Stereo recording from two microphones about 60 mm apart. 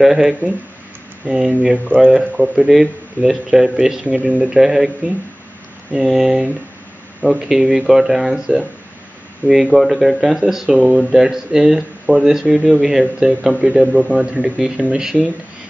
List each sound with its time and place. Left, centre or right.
0.0 s speech: centre
4.0 s speech: centre
4.4 s speech: centre